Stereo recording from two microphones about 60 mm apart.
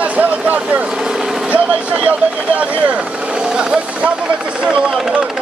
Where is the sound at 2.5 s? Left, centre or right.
Right.